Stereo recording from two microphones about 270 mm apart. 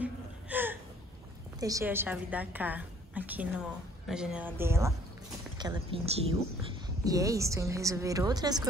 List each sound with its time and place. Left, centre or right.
0.0 s gasp: centre
1.6 s a woman's voice: centre